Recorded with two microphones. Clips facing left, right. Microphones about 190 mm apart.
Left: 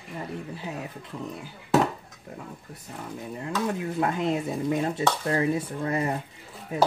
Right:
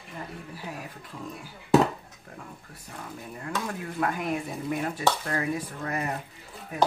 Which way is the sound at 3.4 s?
25° left (ahead or behind).